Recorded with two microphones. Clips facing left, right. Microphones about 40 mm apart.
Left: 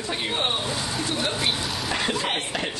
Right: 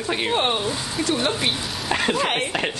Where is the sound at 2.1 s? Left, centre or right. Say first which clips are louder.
Right 4 dB; right.